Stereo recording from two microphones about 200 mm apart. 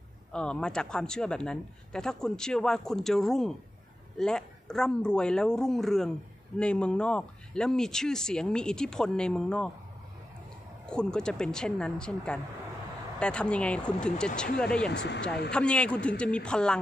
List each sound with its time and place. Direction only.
0.3 s a man's voice: 5° left (ahead or behind)
10.9 s a man's voice: 5° left (ahead or behind)
14.9 s speech: 60° left (ahead or behind)
15.5 s a man's voice: 5° left (ahead or behind)